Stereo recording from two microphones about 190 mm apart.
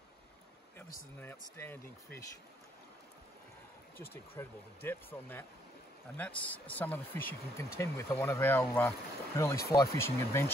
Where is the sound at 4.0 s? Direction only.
10° left (ahead or behind).